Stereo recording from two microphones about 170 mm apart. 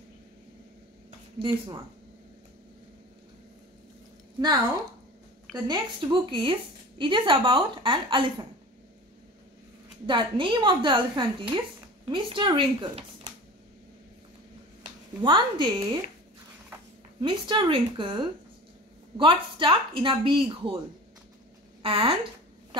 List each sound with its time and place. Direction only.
5.7 s a woman's voice: 25° right (ahead or behind)
10.0 s a woman's voice: 30° right (ahead or behind)
15.2 s a woman's voice: 30° right (ahead or behind)
17.2 s a woman's voice: 30° right (ahead or behind)
21.8 s a woman's voice: 35° right (ahead or behind)